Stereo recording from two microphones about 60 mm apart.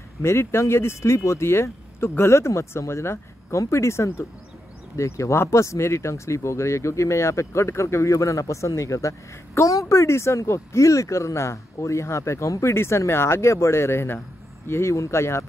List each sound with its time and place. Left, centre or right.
0.2 s speech: left
12.7 s speech: left